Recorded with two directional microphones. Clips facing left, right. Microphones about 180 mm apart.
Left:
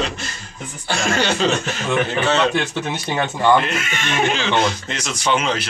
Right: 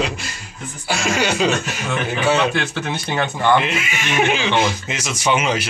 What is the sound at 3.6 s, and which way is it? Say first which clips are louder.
Speech: right 1 dB; 5° right (ahead or behind).